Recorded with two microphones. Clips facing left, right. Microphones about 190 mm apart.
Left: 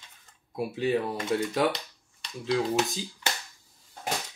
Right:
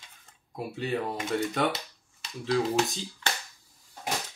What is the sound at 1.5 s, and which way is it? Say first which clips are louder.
Speech: left 2 dB; centre (ahead or behind).